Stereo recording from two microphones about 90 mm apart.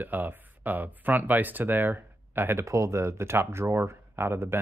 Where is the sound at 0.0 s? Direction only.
20° right (ahead or behind).